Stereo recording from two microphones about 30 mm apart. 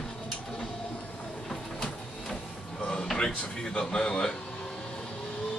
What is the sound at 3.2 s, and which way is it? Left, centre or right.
Speech, left.